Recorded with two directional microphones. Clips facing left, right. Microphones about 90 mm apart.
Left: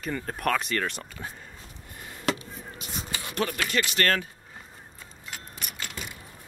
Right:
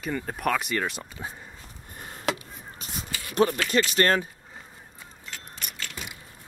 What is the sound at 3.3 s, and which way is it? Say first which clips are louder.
Speech: right 6 dB; 25° right (ahead or behind).